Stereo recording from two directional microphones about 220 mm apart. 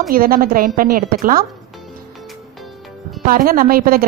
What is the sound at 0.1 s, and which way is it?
A woman's voice, 40° right (ahead or behind).